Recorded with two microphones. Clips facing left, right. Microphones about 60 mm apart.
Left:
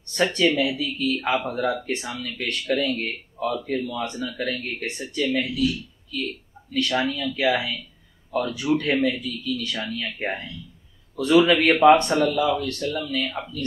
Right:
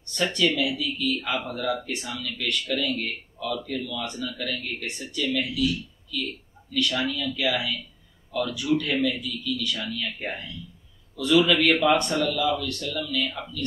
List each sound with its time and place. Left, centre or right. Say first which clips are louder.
0.1 s a man's voice: left 3 dB; left
11.7 s a man's voice: left 10 dB; left
12.0 s speech: left 4 dB; left